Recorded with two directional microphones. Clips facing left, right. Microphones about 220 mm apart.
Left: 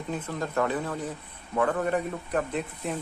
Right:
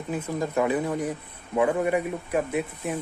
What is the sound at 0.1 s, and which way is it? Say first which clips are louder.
A man's voice: right 4 dB; 10° right (ahead or behind).